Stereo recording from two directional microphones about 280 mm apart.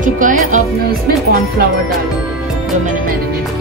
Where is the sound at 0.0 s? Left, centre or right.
Right.